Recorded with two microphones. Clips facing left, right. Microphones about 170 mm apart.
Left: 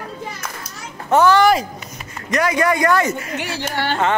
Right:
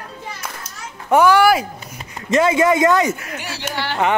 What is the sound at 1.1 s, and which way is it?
Speech, 10° right (ahead or behind).